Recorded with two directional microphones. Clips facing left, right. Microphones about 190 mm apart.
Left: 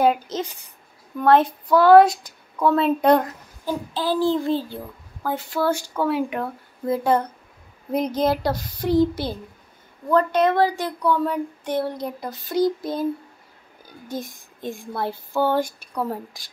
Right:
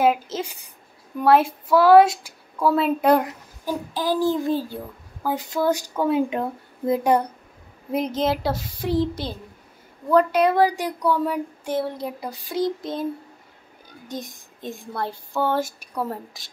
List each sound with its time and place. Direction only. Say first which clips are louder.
0.0 s a child's voice: left 1 dB; centre (ahead or behind)
8.2 s speech: left 2 dB; centre (ahead or behind)
10.0 s a child's voice: right 1 dB; 10° right (ahead or behind)
12.5 s speech: left 3 dB; centre (ahead or behind)
14.1 s speech: left 2 dB; centre (ahead or behind)